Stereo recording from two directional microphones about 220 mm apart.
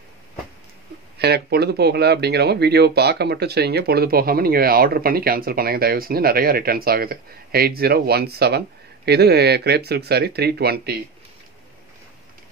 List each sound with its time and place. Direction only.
1.1 s speech: 45° right (ahead or behind)